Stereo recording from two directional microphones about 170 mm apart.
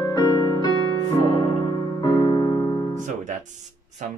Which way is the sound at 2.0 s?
25° left (ahead or behind).